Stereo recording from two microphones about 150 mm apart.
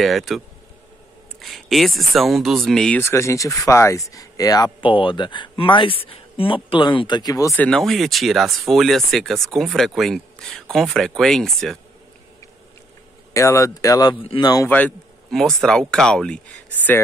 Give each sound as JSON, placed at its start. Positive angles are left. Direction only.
{"t": 0.0, "sound": "speech", "side_deg": 0}
{"t": 1.4, "sound": "speech", "side_deg": 0}
{"t": 7.5, "sound": "speech", "side_deg": 5}
{"t": 13.3, "sound": "speech", "side_deg": 20}
{"t": 15.3, "sound": "speech", "side_deg": 5}